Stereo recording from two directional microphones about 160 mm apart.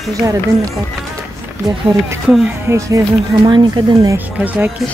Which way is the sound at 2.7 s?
15° right (ahead or behind).